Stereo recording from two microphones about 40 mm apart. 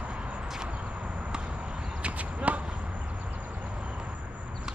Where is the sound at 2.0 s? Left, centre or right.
Right.